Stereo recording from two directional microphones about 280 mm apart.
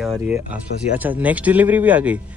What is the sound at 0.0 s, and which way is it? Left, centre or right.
Speech, centre.